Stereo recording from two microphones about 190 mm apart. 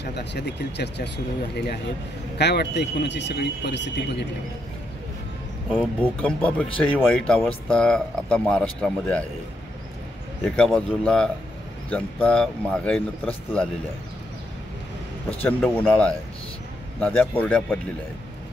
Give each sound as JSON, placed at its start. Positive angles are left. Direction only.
{"t": 0.0, "sound": "speech", "side_deg": 65}
{"t": 2.3, "sound": "speech", "side_deg": 60}
{"t": 5.7, "sound": "speech", "side_deg": 5}
{"t": 10.4, "sound": "speech", "side_deg": 5}
{"t": 15.2, "sound": "a man's voice", "side_deg": 5}
{"t": 17.0, "sound": "a man's voice", "side_deg": 10}